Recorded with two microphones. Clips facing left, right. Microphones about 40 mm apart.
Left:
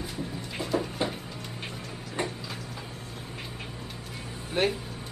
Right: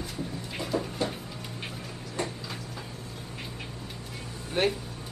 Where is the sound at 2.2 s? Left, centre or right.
Left.